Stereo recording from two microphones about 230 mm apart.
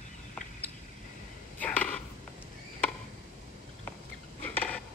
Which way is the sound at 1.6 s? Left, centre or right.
Centre.